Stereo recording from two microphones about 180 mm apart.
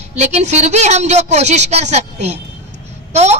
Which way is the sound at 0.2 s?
40° right (ahead or behind).